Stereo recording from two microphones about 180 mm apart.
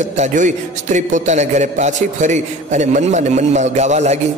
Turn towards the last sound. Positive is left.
turn(degrees=-40)  # may be behind; listen again after turning